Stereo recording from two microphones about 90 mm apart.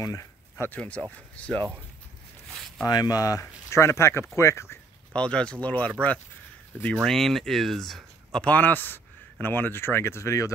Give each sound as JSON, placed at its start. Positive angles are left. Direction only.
{"t": 0.0, "sound": "a sound", "side_deg": 35}
{"t": 0.7, "sound": "speech", "side_deg": 15}
{"t": 2.9, "sound": "speech", "side_deg": 45}
{"t": 5.1, "sound": "speech", "side_deg": 10}
{"t": 7.1, "sound": "speech", "side_deg": 5}